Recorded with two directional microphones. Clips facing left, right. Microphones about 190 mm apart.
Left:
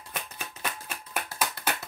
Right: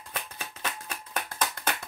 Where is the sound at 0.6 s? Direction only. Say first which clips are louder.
Even; 10° left (ahead or behind).